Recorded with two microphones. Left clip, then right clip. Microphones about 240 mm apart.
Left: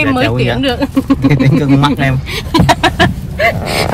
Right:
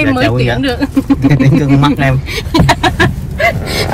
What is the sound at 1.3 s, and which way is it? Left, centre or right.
Speech, centre.